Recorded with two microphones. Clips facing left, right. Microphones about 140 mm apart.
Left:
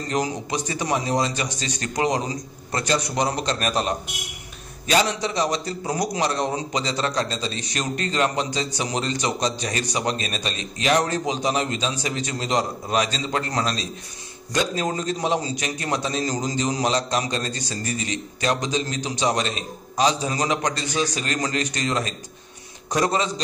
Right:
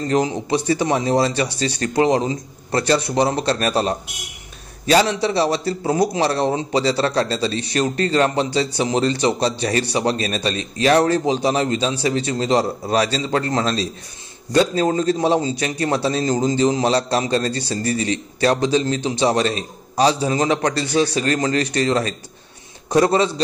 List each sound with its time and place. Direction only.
0.1 s a man's voice: 25° right (ahead or behind)